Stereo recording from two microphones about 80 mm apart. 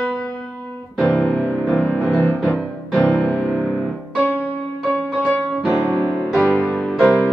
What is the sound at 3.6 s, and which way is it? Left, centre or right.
Piano, centre.